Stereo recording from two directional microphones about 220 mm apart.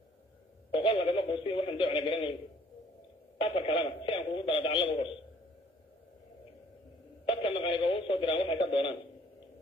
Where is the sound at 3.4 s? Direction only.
25° left (ahead or behind).